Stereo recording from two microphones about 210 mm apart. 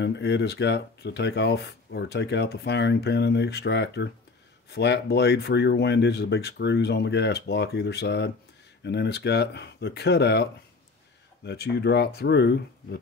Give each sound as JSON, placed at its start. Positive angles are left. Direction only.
{"t": 0.0, "sound": "speech", "side_deg": 55}